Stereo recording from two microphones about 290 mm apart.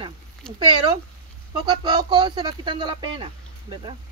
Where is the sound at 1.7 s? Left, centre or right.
Centre.